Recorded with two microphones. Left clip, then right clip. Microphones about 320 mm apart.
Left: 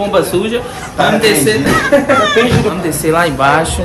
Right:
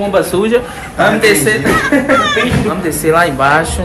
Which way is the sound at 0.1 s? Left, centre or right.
Centre.